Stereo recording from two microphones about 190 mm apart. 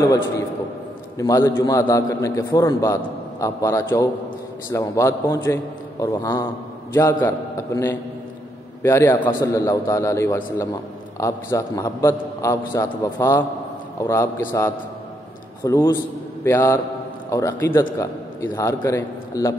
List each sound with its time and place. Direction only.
1.1 s a man's voice: 15° left (ahead or behind)